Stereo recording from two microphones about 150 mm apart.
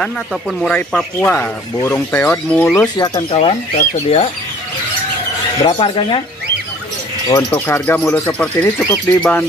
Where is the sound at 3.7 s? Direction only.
50° left (ahead or behind).